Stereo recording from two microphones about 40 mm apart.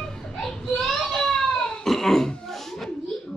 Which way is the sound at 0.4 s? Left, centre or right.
Centre.